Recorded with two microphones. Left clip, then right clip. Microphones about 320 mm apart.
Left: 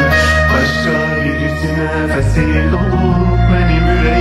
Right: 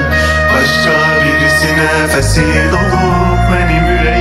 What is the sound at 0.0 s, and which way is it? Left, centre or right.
Music, centre.